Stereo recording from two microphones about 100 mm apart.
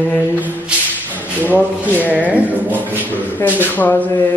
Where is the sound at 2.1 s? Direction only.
15° right (ahead or behind).